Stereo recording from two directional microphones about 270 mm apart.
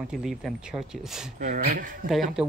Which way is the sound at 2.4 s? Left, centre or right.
Centre.